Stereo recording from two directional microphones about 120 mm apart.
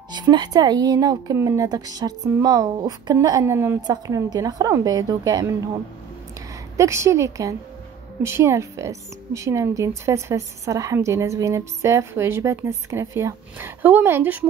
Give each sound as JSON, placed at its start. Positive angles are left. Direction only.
{"t": 0.1, "sound": "a woman's voice", "side_deg": -35}
{"t": 3.8, "sound": "a woman's voice", "side_deg": -35}
{"t": 6.8, "sound": "a woman's voice", "side_deg": -25}